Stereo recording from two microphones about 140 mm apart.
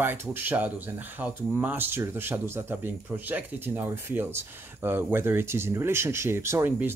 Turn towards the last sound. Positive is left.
turn(degrees=-15)  # may be behind; listen again after turning